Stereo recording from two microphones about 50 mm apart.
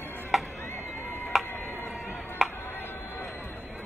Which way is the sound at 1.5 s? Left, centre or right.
Left.